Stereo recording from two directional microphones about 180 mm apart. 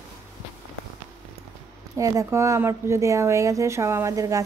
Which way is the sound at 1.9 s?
15° right (ahead or behind).